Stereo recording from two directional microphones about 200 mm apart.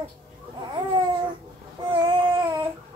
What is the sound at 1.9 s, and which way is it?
Baby cry, 20° right (ahead or behind).